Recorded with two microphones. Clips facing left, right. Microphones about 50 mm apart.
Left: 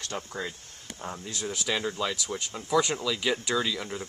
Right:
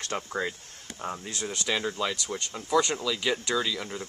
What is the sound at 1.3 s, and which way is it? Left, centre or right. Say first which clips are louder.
Speech: left 1 dB; centre.